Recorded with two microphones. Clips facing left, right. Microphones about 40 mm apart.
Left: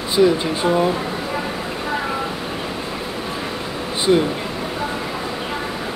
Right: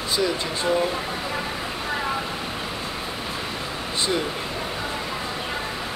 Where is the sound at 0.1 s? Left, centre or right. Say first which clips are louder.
Left 9 dB; left.